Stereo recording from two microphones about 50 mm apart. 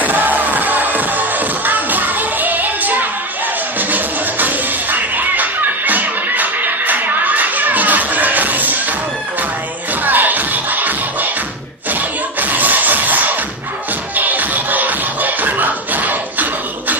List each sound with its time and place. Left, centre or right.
0.0 s music: right
10.0 s music: right